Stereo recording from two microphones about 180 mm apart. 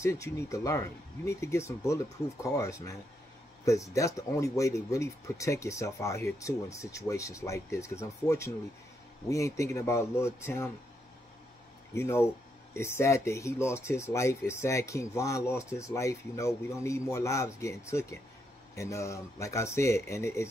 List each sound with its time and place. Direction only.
0.0 s speech: 15° left (ahead or behind)
11.9 s speech: 15° left (ahead or behind)